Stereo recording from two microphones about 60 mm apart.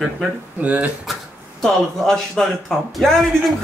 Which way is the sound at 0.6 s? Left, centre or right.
Right.